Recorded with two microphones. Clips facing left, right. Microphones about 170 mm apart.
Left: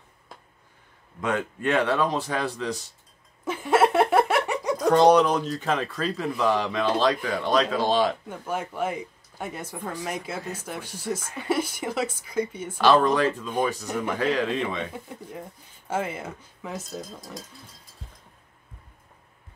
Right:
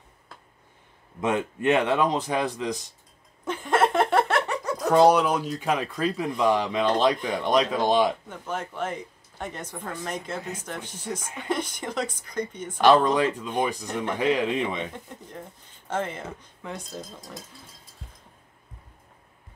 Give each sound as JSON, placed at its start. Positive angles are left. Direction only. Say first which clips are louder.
{"t": 1.2, "sound": "speech", "louder": "right 2 dB", "side_deg": -20}
{"t": 3.4, "sound": "a sound", "louder": "left 2 dB", "side_deg": 5}
{"t": 4.7, "sound": "speech", "louder": "left 1 dB", "side_deg": -5}
{"t": 8.3, "sound": "speech", "louder": "left 2 dB", "side_deg": 10}
{"t": 12.7, "sound": "speech", "louder": "right 1 dB", "side_deg": -15}
{"t": 13.8, "sound": "speech", "louder": "left 1 dB", "side_deg": 5}
{"t": 14.1, "sound": "speech", "louder": "right 2 dB", "side_deg": -15}
{"t": 14.9, "sound": "speech", "louder": "left 3 dB", "side_deg": 10}